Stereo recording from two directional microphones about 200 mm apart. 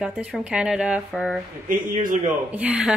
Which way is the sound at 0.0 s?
5° right (ahead or behind).